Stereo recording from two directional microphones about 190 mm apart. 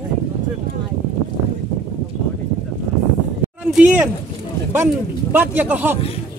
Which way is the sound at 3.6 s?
5° right (ahead or behind).